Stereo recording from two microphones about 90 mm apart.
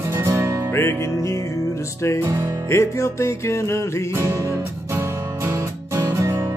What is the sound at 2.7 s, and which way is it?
Music, 30° left (ahead or behind).